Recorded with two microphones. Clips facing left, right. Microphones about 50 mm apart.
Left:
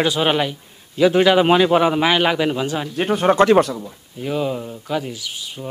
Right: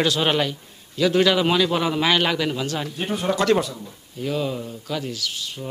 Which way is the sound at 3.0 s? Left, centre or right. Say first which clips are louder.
Left 9 dB; left.